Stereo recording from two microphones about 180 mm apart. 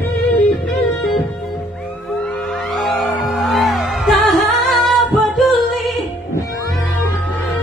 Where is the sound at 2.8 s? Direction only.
Centre (ahead or behind).